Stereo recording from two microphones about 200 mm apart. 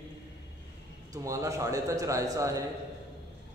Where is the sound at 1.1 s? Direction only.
15° right (ahead or behind).